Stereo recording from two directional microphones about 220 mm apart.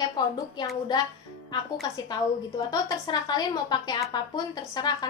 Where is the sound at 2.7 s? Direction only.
15° left (ahead or behind).